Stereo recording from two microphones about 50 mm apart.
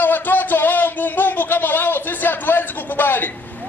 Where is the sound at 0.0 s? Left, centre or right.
Left.